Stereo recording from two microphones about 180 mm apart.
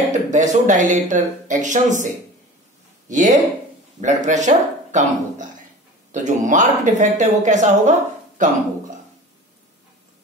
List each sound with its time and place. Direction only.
0.1 s speech: 40° right (ahead or behind)
3.1 s speech: 45° right (ahead or behind)